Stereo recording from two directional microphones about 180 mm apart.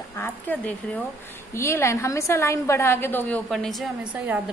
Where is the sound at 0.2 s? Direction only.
10° left (ahead or behind).